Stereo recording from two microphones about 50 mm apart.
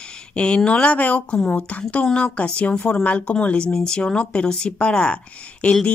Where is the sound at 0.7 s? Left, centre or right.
Left.